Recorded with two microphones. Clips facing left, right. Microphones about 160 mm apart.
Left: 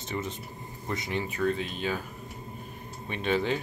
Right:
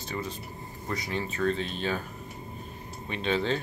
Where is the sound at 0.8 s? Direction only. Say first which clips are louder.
Even; 20° left (ahead or behind).